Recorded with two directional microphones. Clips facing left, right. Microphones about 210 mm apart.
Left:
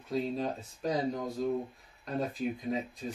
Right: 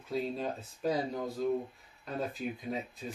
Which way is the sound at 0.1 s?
5° right (ahead or behind).